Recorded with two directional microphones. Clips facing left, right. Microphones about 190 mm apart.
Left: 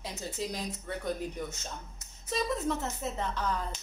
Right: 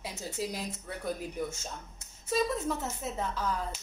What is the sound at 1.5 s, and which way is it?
Speech, 25° right (ahead or behind).